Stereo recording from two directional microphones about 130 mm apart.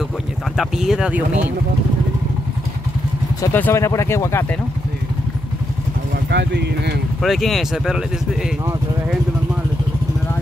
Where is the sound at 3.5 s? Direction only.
15° left (ahead or behind).